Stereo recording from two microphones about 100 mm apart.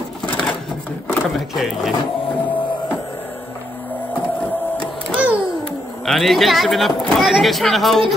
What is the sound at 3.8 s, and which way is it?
Music, 20° left (ahead or behind).